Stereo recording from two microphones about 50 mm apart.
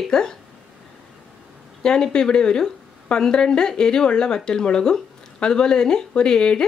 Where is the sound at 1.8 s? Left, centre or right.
Centre.